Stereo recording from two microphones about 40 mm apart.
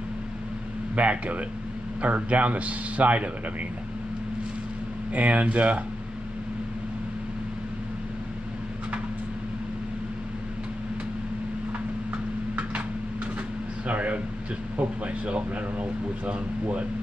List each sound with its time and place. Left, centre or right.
0.9 s speech: right
5.1 s speech: right
13.8 s speech: right